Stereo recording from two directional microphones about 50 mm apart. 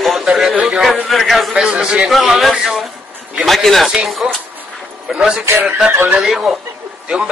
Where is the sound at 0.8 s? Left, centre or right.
Centre.